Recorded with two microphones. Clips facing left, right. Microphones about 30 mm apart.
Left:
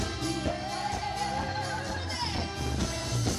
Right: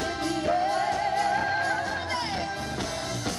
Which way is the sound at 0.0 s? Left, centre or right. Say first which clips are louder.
Right 4 dB; right.